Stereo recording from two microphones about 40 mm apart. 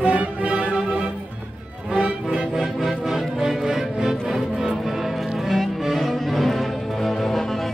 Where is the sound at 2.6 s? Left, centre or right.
Centre.